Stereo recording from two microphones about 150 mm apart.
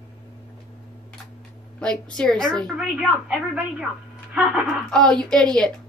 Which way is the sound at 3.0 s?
5° right (ahead or behind).